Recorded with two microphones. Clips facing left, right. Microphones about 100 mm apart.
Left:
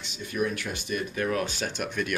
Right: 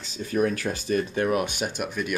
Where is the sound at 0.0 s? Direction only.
35° right (ahead or behind); by 1.7 s 15° right (ahead or behind).